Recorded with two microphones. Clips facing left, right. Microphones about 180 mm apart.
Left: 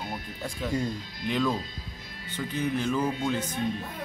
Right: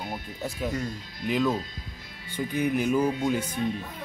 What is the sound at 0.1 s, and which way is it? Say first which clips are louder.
Speech: right 2 dB; 5° right (ahead or behind).